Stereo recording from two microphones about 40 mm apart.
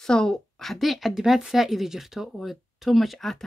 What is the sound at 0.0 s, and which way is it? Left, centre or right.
Speech, centre.